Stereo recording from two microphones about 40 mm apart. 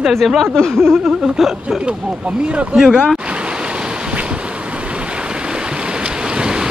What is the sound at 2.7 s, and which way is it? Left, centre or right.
Speech, centre.